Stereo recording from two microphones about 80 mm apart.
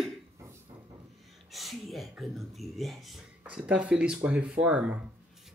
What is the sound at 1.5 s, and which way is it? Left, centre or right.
A woman's voice, centre.